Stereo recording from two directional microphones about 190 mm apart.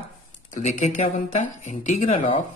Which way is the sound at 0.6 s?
40° left (ahead or behind).